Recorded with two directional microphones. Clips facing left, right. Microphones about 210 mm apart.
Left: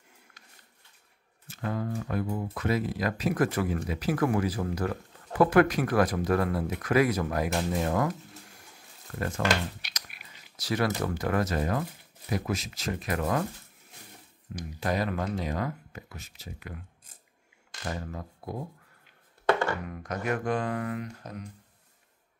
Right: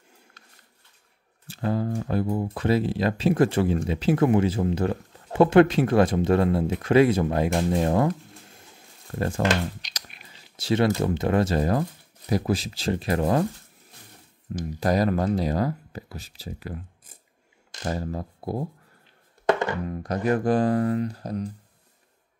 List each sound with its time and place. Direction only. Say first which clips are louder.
1.5 s speech: right 6 dB; 30° right (ahead or behind)
7.5 s a sound: right 5 dB; 30° right (ahead or behind)
10.5 s speech: right 6 dB; 25° right (ahead or behind)
14.8 s speech: right 7 dB; 40° right (ahead or behind)
17.8 s speech: right 7 dB; 35° right (ahead or behind)
19.9 s speech: right 7 dB; 35° right (ahead or behind)